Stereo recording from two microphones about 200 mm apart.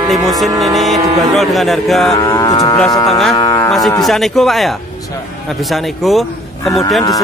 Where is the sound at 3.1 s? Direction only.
Centre (ahead or behind).